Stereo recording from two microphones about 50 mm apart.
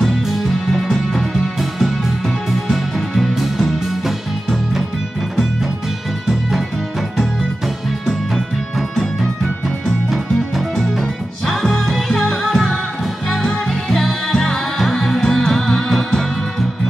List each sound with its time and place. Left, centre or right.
0.0 s music: centre
8.7 s music: centre